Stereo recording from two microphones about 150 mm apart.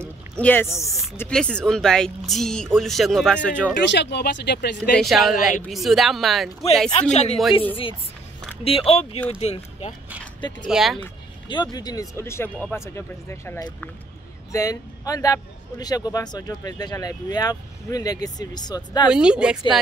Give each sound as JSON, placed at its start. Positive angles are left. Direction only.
{"t": 0.4, "sound": "a man's voice", "side_deg": 15}
{"t": 3.7, "sound": "speech", "side_deg": 90}
{"t": 4.9, "sound": "speech", "side_deg": 0}
{"t": 6.9, "sound": "speech", "side_deg": 45}
{"t": 8.6, "sound": "speech", "side_deg": 40}
{"t": 10.7, "sound": "speech", "side_deg": 0}
{"t": 11.4, "sound": "a man's voice", "side_deg": 30}
{"t": 19.0, "sound": "speech", "side_deg": -5}